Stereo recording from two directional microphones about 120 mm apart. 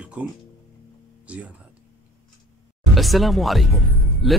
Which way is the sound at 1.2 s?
10° right (ahead or behind).